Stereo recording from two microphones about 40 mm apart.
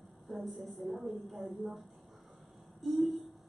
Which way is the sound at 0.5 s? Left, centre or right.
Centre.